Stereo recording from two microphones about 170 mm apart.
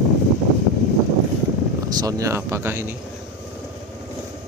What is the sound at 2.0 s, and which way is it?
A man's voice, 20° right (ahead or behind).